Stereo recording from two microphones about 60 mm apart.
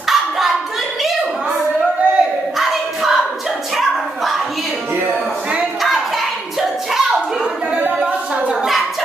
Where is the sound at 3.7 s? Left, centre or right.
Centre.